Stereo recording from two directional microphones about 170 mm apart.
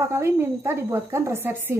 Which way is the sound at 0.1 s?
15° right (ahead or behind).